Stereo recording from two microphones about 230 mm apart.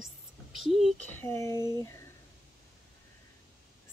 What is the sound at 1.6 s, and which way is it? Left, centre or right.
Speech, centre.